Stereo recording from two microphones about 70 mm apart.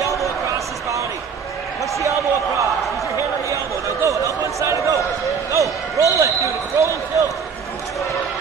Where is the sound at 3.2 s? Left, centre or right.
Right.